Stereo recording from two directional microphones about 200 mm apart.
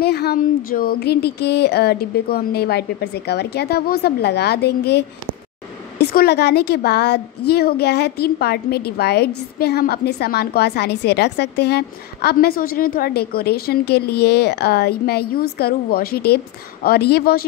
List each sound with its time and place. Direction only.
0.0 s a woman's voice: 55° left (ahead or behind)